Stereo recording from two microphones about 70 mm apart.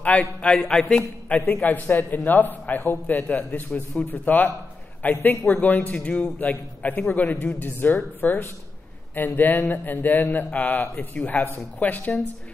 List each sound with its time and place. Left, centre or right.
0.2 s a man's voice: centre
1.4 s a man's voice: left